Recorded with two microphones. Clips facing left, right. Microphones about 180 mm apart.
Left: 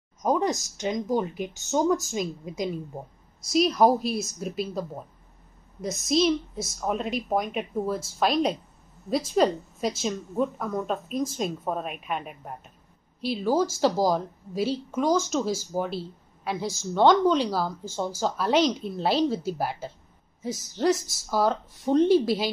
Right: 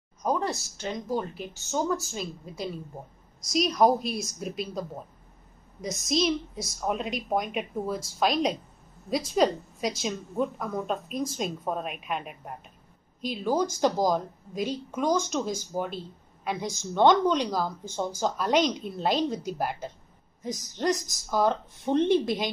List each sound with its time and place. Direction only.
0.2 s a woman's voice: 15° left (ahead or behind)
3.5 s a woman's voice: 5° left (ahead or behind)